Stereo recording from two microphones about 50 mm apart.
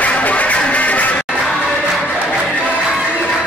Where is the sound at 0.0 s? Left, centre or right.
Left.